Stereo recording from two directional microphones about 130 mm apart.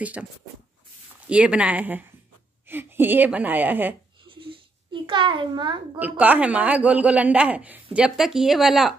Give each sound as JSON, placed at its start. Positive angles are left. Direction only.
{"t": 0.0, "sound": "a woman's voice", "side_deg": -10}
{"t": 1.3, "sound": "a woman's voice", "side_deg": -10}
{"t": 4.3, "sound": "wheeze", "side_deg": -45}
{"t": 5.0, "sound": "a child's voice", "side_deg": -40}
{"t": 5.9, "sound": "a woman's voice", "side_deg": -10}